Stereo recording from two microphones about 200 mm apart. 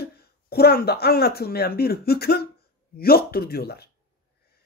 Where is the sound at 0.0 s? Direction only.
50° left (ahead or behind).